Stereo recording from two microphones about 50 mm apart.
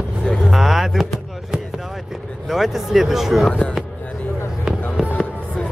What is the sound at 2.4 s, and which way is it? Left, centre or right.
Speech, centre.